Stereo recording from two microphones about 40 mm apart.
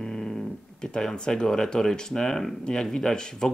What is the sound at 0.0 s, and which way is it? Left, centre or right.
Speech, centre.